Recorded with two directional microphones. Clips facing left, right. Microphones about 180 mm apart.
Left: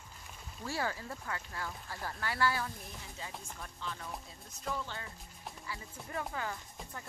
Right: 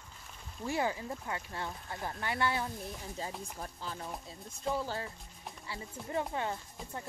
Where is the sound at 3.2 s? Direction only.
35° right (ahead or behind).